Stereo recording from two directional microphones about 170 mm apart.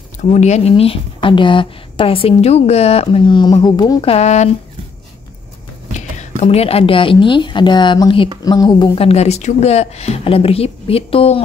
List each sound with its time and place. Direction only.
0.2 s speech: 40° left (ahead or behind); by 4.0 s 25° left (ahead or behind)
4.0 s speech: 40° left (ahead or behind)
5.9 s a woman's voice: 40° left (ahead or behind)